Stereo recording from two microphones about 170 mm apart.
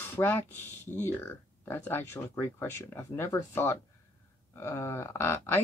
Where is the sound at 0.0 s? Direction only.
10° left (ahead or behind).